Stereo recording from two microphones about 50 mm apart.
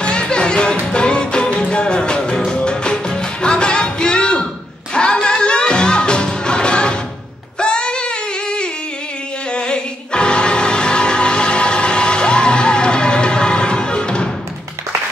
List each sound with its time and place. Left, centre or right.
0.0 s music: centre
7.5 s female singing: centre
9.5 s music: centre